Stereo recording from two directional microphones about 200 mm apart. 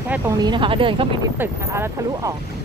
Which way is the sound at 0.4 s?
25° right (ahead or behind).